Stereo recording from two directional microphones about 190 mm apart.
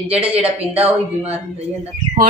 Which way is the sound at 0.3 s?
10° right (ahead or behind).